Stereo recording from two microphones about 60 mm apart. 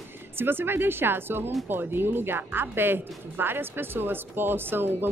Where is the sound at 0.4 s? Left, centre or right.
Right.